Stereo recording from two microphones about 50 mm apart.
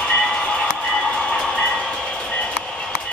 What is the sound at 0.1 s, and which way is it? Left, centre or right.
Music, centre.